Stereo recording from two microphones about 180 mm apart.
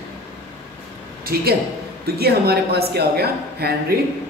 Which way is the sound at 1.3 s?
60° right (ahead or behind).